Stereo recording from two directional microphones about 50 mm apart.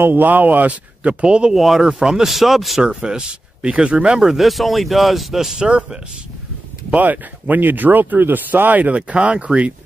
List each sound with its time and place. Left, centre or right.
0.0 s speech: right
1.2 s speech: centre
1.5 s speech: centre
2.8 s speech: centre
4.2 s speech: centre
5.6 s speech: centre
6.9 s speech: right